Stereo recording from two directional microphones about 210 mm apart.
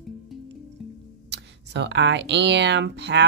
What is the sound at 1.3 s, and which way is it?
Speech, 55° right (ahead or behind).